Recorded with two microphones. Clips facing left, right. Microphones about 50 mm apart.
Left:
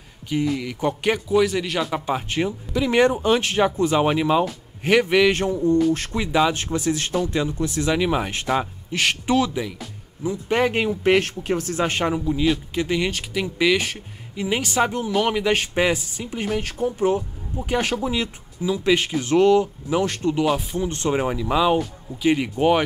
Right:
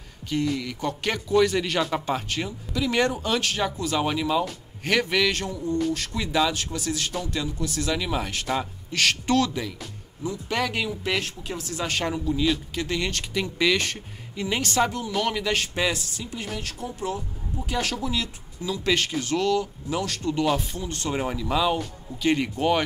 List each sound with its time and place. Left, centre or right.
0.3 s speech: centre
1.4 s a man's voice: centre
2.2 s speech: left
10.5 s speech: left
12.0 s speech: centre
16.5 s speech: left
20.3 s speech: centre
20.7 s speech: left